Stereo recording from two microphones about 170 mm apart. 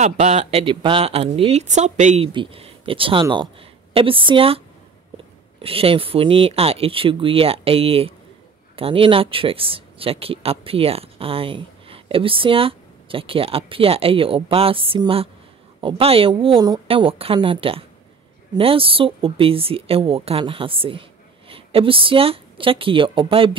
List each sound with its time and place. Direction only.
0.0 s speech: 40° right (ahead or behind)
2.2 s speech: 30° right (ahead or behind)